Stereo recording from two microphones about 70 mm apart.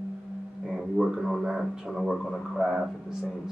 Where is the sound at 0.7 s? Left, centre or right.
Centre.